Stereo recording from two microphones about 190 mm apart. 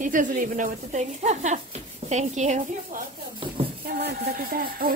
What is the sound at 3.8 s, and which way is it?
Speech, 55° right (ahead or behind).